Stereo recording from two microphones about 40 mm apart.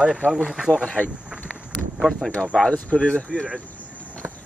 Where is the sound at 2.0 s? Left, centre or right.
Centre.